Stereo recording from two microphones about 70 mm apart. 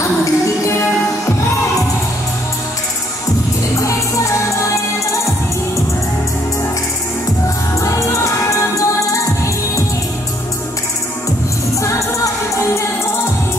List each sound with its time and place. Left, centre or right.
0.0 s music: left
3.7 s music: left
7.8 s music: left